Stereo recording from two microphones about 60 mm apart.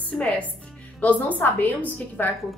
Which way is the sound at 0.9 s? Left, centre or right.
Left.